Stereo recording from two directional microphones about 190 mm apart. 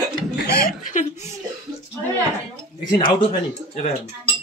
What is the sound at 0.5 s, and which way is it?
Laughter, 50° left (ahead or behind).